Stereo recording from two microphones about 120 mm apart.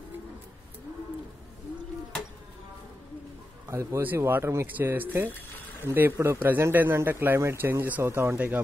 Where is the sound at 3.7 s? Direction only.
25° right (ahead or behind).